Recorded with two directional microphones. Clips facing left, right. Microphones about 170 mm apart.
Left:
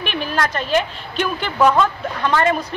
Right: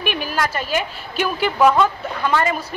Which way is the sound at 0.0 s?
10° right (ahead or behind).